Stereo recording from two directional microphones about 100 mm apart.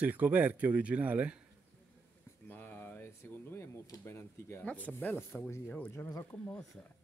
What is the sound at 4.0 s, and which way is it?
Speech, 25° left (ahead or behind).